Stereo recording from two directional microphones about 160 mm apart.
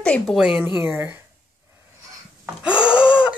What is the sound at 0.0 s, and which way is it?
Speech, 5° left (ahead or behind).